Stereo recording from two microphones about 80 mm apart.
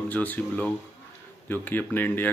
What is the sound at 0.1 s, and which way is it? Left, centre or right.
Speech, left.